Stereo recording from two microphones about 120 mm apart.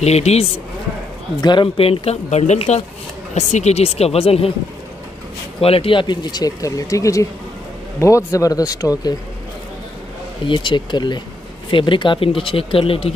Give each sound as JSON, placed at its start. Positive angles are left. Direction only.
{"t": 0.0, "sound": "speech", "side_deg": 65}
{"t": 1.4, "sound": "speech", "side_deg": 40}
{"t": 5.6, "sound": "speech", "side_deg": 50}
{"t": 10.4, "sound": "speech", "side_deg": 40}